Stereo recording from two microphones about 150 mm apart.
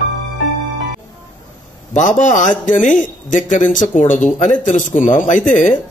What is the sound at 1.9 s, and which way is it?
A man's voice, 55° left (ahead or behind).